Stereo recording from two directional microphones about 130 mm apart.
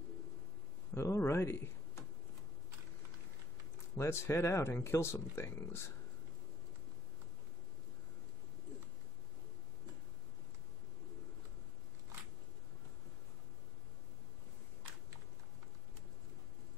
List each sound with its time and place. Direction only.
0.9 s speech: 20° left (ahead or behind)
3.9 s speech: 20° left (ahead or behind)